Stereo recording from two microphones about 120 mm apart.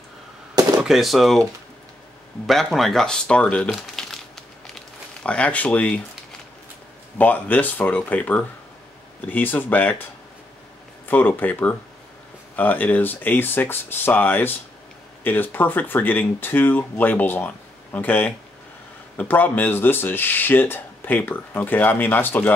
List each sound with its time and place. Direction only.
0.8 s speech: centre (ahead or behind)
2.4 s speech: centre (ahead or behind)
3.7 s crumpling: 5° left (ahead or behind)
7.2 s speech: 15° left (ahead or behind)
11.1 s speech: 15° left (ahead or behind)